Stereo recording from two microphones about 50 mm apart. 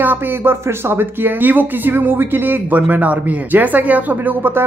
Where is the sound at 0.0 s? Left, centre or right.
Right.